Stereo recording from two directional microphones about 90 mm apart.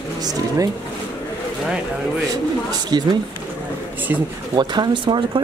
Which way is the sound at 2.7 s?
50° right (ahead or behind).